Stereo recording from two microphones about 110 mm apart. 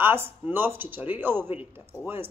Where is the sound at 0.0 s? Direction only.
20° right (ahead or behind).